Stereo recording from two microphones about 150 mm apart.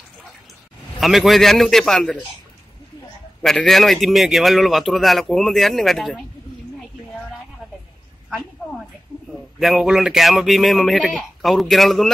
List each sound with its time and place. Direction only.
0.9 s a man's voice: centre (ahead or behind)
3.4 s a man's voice: centre (ahead or behind)
9.3 s a man's voice: centre (ahead or behind)